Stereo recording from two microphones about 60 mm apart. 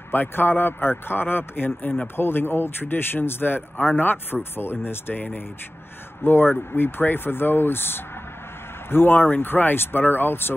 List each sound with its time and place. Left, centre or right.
0.1 s a man's voice: left